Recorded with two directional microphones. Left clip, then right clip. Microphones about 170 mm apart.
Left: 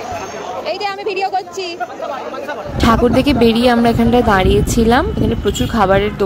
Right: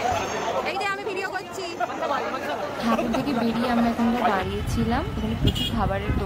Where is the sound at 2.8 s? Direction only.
40° left (ahead or behind).